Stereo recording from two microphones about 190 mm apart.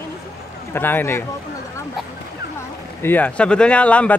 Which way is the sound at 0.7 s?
10° left (ahead or behind).